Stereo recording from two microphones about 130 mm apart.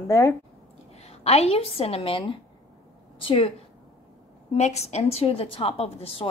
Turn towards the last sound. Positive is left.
turn(degrees=50)  # may be behind; listen again after turning